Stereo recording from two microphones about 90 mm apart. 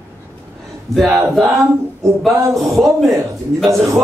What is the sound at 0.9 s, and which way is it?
Speech, centre (ahead or behind).